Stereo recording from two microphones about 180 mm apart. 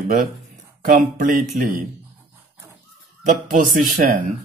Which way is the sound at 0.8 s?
50° right (ahead or behind).